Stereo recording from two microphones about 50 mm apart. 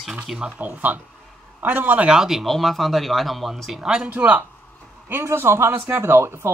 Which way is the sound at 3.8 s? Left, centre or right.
Centre.